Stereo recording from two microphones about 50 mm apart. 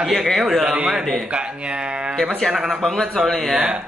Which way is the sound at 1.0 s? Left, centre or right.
Centre.